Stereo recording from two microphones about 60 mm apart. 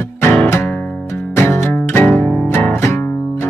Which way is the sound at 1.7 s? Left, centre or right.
Left.